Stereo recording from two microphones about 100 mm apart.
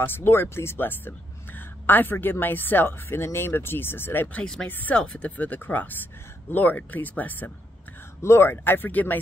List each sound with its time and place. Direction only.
0.0 s speech: 20° left (ahead or behind)